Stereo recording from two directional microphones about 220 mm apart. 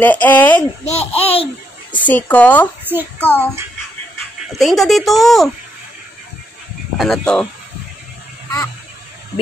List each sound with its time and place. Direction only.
0.0 s speech: 10° left (ahead or behind)
0.8 s speech: 30° left (ahead or behind)
1.9 s speech: 5° left (ahead or behind)
2.8 s a sound: 10° right (ahead or behind)
3.2 s speech: 5° left (ahead or behind)
4.5 s speech: centre (ahead or behind)
7.0 s speech: centre (ahead or behind)